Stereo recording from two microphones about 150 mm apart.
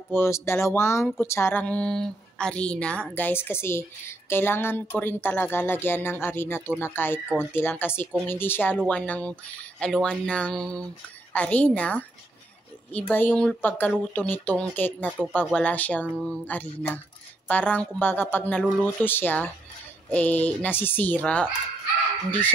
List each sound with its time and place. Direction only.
0.1 s speech: 15° left (ahead or behind)